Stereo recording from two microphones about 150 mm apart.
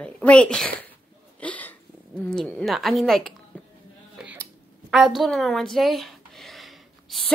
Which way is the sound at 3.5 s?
10° left (ahead or behind).